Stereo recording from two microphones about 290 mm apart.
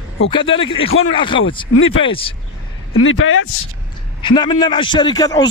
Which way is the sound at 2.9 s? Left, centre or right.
Left.